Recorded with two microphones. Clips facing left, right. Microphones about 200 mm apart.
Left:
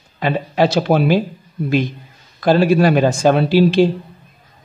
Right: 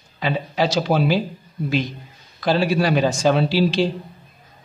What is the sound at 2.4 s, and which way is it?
Speech, 50° left (ahead or behind).